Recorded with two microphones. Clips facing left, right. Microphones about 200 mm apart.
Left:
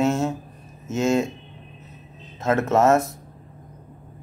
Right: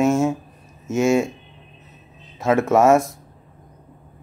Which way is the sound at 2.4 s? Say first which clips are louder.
Right 3 dB; 10° right (ahead or behind).